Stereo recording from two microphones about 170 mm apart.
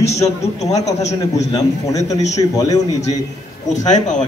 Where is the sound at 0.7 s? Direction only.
20° left (ahead or behind).